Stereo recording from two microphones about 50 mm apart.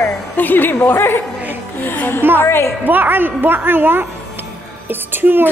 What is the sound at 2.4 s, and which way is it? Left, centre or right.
Speech, left.